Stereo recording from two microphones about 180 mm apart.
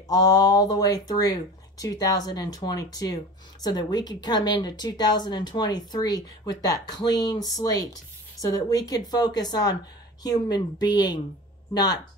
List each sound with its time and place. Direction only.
0.1 s a woman's voice: 20° left (ahead or behind)